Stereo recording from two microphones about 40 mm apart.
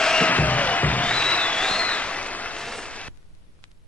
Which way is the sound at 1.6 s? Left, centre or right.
Centre.